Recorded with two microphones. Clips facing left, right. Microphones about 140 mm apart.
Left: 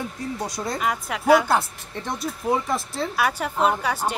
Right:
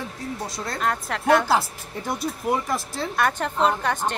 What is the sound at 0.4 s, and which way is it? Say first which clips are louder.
Speech: left 2 dB; centre (ahead or behind).